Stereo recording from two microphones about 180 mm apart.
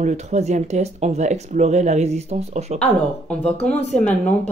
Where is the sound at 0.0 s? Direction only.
40° right (ahead or behind).